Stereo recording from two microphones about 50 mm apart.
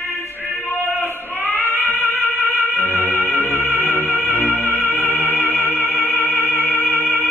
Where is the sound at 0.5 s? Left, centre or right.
Left.